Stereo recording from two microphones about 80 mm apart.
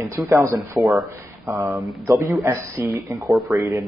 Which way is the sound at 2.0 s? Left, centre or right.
Right.